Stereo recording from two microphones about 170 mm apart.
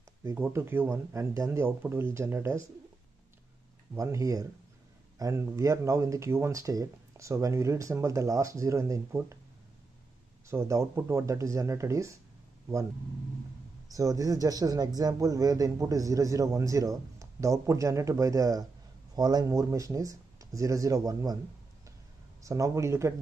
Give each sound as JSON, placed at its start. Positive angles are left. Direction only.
{"t": 0.2, "sound": "speech", "side_deg": -15}
{"t": 3.9, "sound": "speech", "side_deg": -20}
{"t": 10.5, "sound": "speech", "side_deg": -15}
{"t": 13.9, "sound": "speech", "side_deg": -20}
{"t": 22.4, "sound": "speech", "side_deg": -20}